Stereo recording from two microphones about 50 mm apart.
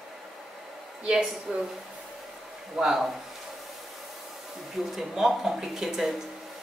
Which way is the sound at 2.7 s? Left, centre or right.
Centre.